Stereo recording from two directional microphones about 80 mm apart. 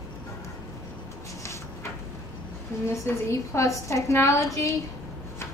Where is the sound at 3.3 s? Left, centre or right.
Left.